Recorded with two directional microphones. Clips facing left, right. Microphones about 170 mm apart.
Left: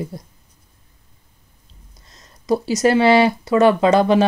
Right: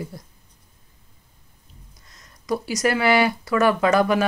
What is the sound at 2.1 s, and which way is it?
Speech, 25° left (ahead or behind).